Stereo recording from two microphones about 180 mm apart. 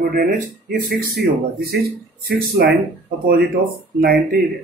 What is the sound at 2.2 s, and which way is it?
Speech, 55° right (ahead or behind).